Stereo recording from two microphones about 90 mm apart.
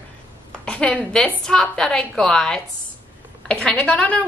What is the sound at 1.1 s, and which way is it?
A woman's voice, 5° left (ahead or behind).